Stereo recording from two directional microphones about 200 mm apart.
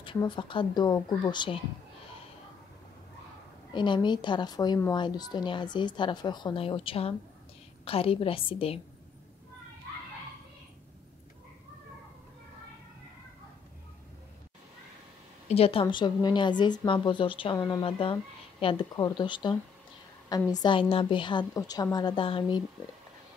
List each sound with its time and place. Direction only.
0.0 s a woman's voice: 25° left (ahead or behind)
3.7 s a woman's voice: 25° left (ahead or behind)
15.4 s a woman's voice: 30° left (ahead or behind)